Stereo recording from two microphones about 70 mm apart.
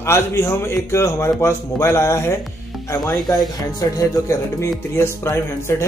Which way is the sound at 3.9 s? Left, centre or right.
Left.